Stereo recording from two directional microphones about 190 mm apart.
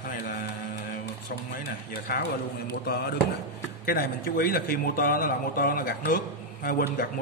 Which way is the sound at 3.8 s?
50° left (ahead or behind).